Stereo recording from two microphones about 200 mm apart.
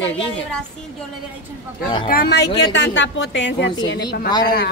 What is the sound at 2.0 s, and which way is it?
A woman's voice, 50° left (ahead or behind).